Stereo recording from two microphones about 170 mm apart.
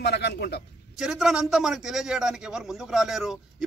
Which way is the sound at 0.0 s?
75° left (ahead or behind).